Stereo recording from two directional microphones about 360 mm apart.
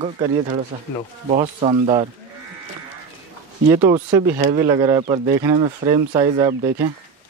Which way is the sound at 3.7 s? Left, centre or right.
Centre.